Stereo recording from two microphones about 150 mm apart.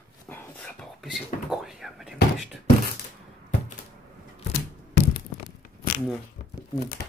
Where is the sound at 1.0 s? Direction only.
Centre (ahead or behind).